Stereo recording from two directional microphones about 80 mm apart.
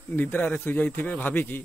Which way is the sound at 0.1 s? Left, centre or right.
Left.